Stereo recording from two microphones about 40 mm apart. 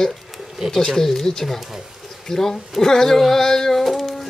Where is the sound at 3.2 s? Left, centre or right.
Centre.